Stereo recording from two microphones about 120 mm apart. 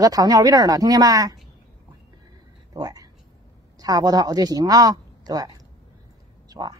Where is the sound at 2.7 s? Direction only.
30° right (ahead or behind).